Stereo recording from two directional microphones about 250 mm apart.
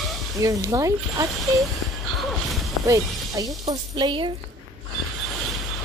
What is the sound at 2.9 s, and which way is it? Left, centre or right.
Speech, centre.